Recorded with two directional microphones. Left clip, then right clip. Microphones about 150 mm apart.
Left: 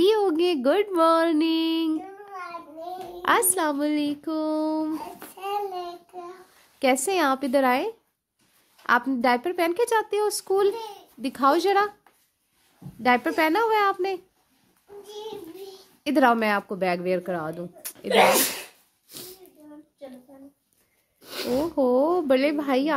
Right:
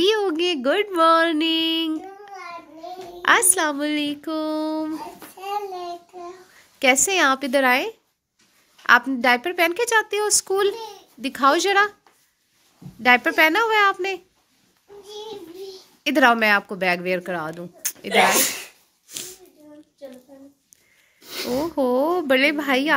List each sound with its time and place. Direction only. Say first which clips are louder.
0.0 s a sound: right 1 dB; 15° left (ahead or behind)
0.9 s speech: right 6 dB; 15° left (ahead or behind)
4.9 s babbling: right 1 dB; 10° right (ahead or behind)
6.8 s speech: right 4 dB; 10° left (ahead or behind)
13.0 s speech: right 5 dB; 10° left (ahead or behind)
15.0 s child singing: right 2 dB; 5° right (ahead or behind)
16.0 s speech: right 4 dB; 10° left (ahead or behind)
19.0 s a sound: right 6 dB; 10° left (ahead or behind)
21.7 s speech: right 1 dB; 5° left (ahead or behind)